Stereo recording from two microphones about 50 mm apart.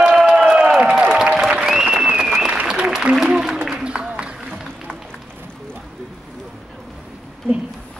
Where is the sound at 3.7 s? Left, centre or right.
Centre.